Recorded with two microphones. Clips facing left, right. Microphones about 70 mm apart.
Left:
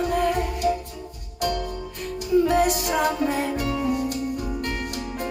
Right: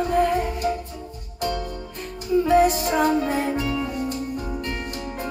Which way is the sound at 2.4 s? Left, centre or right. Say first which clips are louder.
Right 3 dB; right.